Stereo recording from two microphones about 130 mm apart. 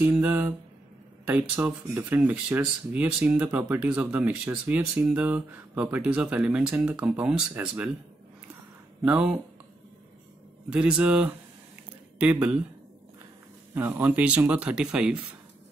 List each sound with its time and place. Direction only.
0.0 s speech: 15° right (ahead or behind)
9.0 s speech: 10° right (ahead or behind)
10.7 s speech: 10° right (ahead or behind)
13.7 s speech: 15° right (ahead or behind)